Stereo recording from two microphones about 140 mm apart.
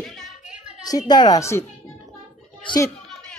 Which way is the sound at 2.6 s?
25° left (ahead or behind).